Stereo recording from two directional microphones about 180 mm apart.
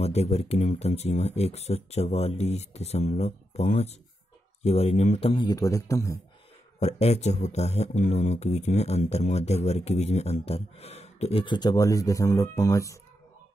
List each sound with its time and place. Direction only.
0.0 s a man's voice: 35° left (ahead or behind); by 6.1 s 20° left (ahead or behind)
6.8 s speech: 35° left (ahead or behind); by 13.0 s 15° left (ahead or behind)